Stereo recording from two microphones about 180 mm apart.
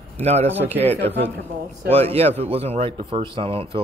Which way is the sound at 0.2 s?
35° right (ahead or behind).